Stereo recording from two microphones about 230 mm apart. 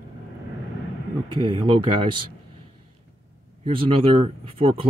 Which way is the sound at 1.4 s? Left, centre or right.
Right.